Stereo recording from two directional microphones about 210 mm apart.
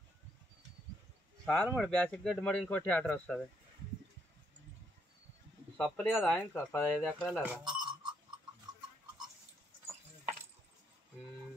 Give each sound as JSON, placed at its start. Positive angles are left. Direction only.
{"t": 1.4, "sound": "speech", "side_deg": 5}
{"t": 5.8, "sound": "speech", "side_deg": 10}
{"t": 7.6, "sound": "a sound", "side_deg": -20}